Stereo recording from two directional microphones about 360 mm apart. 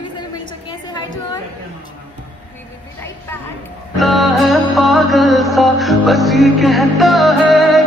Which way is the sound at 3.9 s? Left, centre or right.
Centre.